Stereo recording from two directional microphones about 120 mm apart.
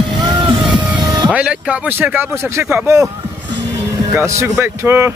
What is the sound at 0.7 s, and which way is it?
Music, 40° right (ahead or behind).